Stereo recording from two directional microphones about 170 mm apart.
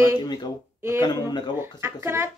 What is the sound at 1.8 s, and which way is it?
Speech, 15° right (ahead or behind).